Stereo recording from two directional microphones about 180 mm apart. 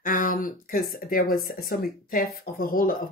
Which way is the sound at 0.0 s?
50° left (ahead or behind).